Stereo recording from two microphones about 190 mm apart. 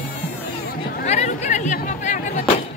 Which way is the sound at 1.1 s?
40° left (ahead or behind).